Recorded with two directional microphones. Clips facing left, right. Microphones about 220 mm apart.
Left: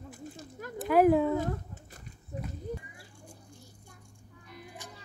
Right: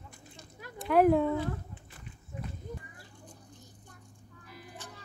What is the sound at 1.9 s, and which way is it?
Walk, 40° left (ahead or behind).